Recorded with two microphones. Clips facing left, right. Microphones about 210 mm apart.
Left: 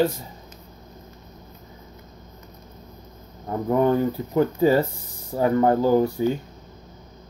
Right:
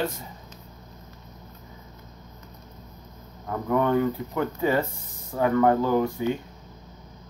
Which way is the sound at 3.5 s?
35° left (ahead or behind).